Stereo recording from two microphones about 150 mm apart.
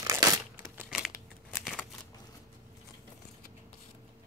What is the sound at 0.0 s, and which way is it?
Crumpling, 20° right (ahead or behind).